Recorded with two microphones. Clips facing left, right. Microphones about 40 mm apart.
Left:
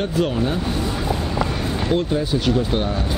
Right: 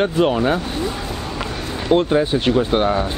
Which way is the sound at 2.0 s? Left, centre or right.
Right.